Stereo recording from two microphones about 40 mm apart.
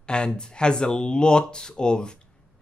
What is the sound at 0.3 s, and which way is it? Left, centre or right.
Speech, left.